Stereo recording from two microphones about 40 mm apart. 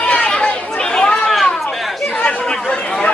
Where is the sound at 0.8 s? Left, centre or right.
Centre.